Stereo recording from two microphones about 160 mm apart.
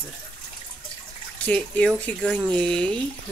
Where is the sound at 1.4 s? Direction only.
5° left (ahead or behind).